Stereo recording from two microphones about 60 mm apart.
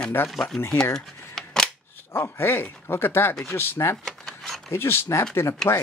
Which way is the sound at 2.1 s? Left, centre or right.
Left.